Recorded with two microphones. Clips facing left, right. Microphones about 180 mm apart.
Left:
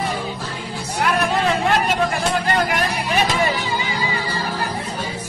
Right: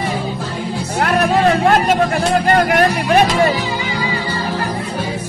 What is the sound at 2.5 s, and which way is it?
Vehicle, 55° right (ahead or behind).